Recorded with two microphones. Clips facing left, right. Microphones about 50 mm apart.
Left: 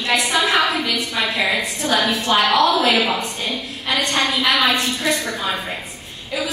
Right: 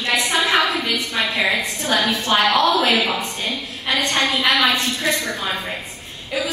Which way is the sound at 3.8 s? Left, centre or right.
Centre.